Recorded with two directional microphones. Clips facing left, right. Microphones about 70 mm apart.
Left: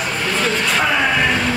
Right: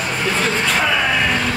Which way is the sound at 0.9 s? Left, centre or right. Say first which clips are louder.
Left 1 dB; centre.